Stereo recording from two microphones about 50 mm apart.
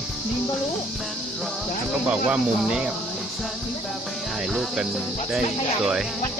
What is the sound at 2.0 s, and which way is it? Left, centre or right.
Speech, right.